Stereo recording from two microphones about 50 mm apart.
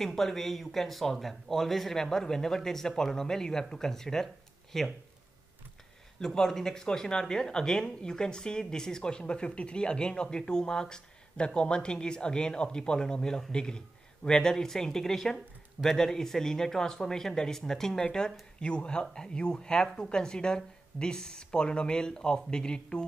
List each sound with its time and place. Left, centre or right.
0.0 s speech: centre
6.1 s speech: centre